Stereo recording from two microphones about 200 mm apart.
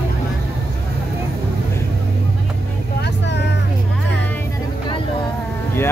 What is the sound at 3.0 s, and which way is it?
Vehicle, 60° left (ahead or behind).